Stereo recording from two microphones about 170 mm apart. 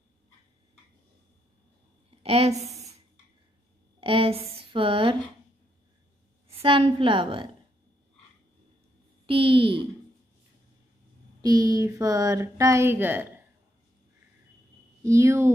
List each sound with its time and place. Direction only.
2.0 s a sound: 35° right (ahead or behind)
4.0 s speech: 35° right (ahead or behind)
6.5 s a woman's voice: 35° right (ahead or behind)
9.2 s a woman's voice: 30° right (ahead or behind)
11.4 s speech: 20° right (ahead or behind)
15.0 s speech: 15° right (ahead or behind)